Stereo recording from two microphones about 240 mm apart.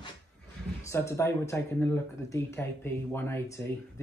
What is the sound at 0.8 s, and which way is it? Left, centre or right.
Speech, centre.